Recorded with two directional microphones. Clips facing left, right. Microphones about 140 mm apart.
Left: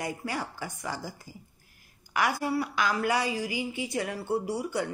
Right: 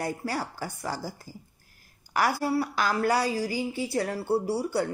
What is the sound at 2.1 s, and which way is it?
Speech, 35° right (ahead or behind).